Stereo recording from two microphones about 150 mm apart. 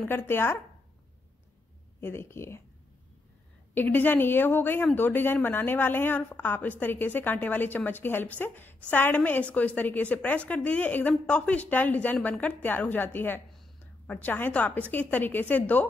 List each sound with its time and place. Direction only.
0.0 s speech: 15° left (ahead or behind)
2.0 s speech: 15° left (ahead or behind)
3.7 s speech: 10° left (ahead or behind)